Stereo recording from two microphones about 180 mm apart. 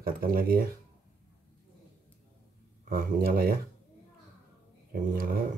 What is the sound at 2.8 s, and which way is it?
Speech, 55° right (ahead or behind).